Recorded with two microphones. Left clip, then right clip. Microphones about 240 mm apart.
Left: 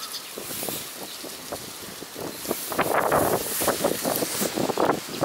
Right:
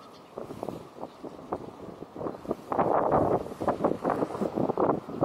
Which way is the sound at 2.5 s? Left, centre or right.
Centre.